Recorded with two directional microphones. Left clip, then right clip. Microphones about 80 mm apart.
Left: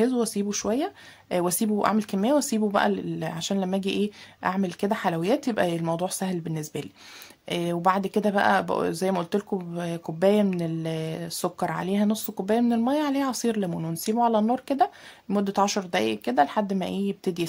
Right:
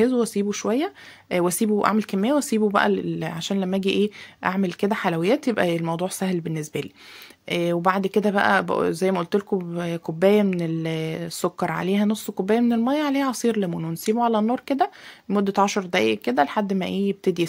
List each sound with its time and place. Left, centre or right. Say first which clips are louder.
0.0 s speech: right 4 dB; centre